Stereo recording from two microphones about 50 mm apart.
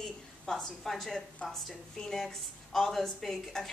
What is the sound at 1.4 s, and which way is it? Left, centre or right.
A woman's voice, centre.